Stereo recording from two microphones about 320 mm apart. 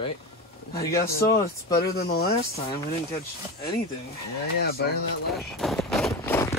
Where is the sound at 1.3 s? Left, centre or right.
Left.